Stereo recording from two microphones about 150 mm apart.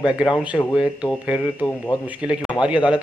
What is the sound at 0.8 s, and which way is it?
A man's voice, 5° right (ahead or behind).